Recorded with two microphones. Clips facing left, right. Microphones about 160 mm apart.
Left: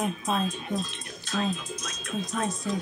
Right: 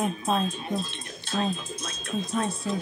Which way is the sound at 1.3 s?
30° right (ahead or behind).